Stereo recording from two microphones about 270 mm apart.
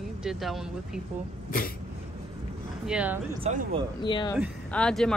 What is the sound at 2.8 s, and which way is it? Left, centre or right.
Speech, centre.